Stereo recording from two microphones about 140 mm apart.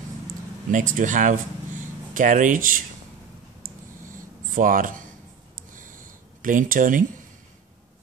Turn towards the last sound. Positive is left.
turn(degrees=-75)  # may be behind; listen again after turning